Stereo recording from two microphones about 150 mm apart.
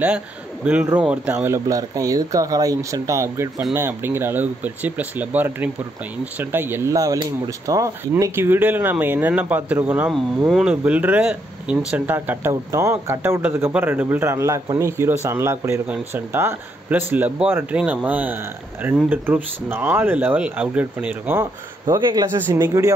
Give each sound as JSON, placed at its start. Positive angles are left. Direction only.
{"t": 0.7, "sound": "a man's voice", "side_deg": -10}
{"t": 21.8, "sound": "speech", "side_deg": -30}